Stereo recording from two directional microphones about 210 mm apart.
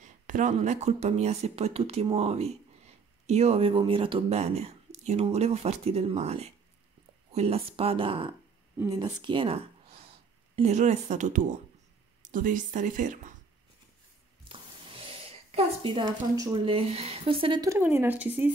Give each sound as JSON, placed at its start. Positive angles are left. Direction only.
{"t": 0.0, "sound": "speech", "side_deg": -35}
{"t": 14.5, "sound": "speech", "side_deg": -25}